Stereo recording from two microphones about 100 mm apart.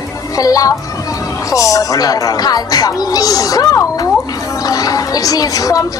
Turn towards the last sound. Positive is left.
turn(degrees=35)  # may be behind; listen again after turning